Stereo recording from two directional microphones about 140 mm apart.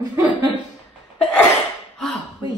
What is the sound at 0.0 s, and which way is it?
Chuckle, 25° right (ahead or behind).